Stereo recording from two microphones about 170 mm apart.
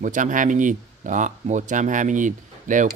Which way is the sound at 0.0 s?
50° right (ahead or behind).